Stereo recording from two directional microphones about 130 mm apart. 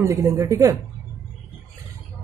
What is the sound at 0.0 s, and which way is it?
Speech, 25° right (ahead or behind).